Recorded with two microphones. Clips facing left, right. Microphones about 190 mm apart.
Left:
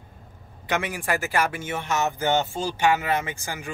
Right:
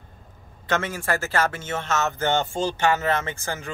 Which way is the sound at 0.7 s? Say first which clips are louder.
Right 1 dB; 15° left (ahead or behind).